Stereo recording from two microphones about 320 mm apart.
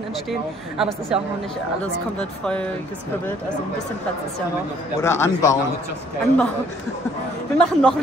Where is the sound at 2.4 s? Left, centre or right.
Centre.